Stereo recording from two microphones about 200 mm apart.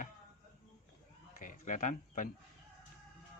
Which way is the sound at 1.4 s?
40° left (ahead or behind).